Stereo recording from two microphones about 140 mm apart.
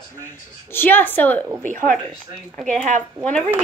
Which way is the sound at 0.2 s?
15° left (ahead or behind).